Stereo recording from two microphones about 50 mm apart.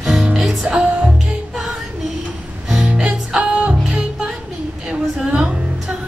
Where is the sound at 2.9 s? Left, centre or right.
Right.